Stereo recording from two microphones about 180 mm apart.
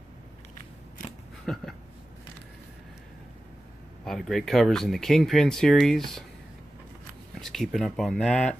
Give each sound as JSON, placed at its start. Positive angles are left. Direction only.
{"t": 1.4, "sound": "a sound", "side_deg": 0}
{"t": 4.0, "sound": "speech", "side_deg": 0}
{"t": 7.3, "sound": "speech", "side_deg": 0}